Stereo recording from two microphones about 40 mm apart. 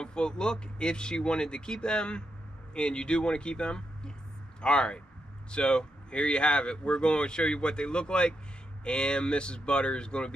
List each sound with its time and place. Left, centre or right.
0.0 s speech: left